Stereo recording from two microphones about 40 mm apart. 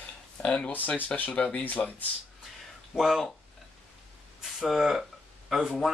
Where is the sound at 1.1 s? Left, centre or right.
Left.